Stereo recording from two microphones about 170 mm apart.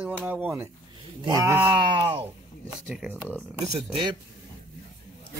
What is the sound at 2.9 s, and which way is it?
Speech, 5° right (ahead or behind).